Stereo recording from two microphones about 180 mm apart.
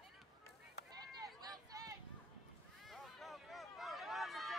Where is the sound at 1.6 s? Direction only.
20° right (ahead or behind).